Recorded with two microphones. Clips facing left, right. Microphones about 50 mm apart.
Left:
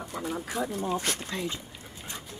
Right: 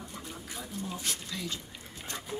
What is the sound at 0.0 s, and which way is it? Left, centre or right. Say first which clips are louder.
Speech: left 9 dB; left.